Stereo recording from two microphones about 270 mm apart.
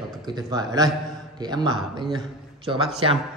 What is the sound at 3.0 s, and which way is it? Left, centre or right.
Speech, centre.